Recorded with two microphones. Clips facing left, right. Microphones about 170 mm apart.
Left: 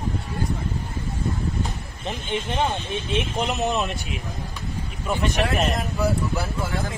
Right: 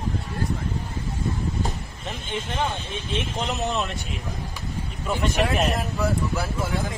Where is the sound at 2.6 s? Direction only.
20° left (ahead or behind).